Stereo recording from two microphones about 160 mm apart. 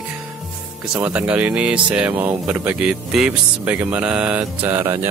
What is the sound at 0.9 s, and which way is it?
Speech, 10° right (ahead or behind).